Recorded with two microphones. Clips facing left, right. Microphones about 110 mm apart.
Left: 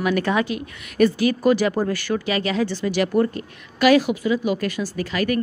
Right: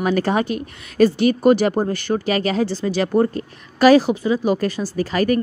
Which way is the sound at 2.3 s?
40° right (ahead or behind).